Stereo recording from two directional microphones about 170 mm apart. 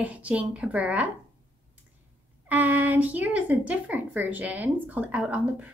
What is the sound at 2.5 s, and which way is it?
A woman's voice, 10° right (ahead or behind).